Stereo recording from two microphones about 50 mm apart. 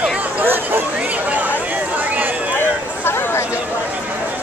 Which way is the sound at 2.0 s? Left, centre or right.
Right.